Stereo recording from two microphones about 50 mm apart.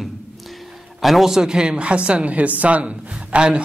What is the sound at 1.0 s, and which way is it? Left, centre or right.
Speech, centre.